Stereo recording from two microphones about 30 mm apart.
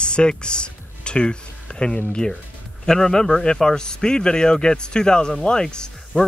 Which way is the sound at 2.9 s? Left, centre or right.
Left.